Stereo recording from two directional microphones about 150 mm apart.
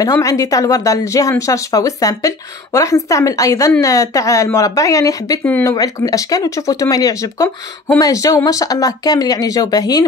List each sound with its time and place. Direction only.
0.0 s speech: 20° left (ahead or behind)